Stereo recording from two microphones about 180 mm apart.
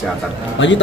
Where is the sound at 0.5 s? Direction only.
90° left.